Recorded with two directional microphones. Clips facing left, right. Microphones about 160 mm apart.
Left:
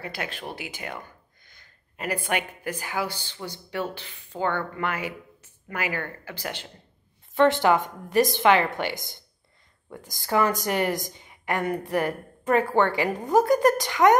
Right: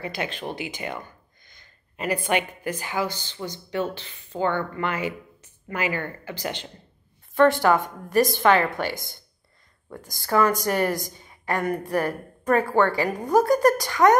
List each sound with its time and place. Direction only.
0.0 s speech: 5° left (ahead or behind)
1.4 s a sound: 5° left (ahead or behind)
2.2 s speech: 5° left (ahead or behind)
7.3 s speech: 20° left (ahead or behind)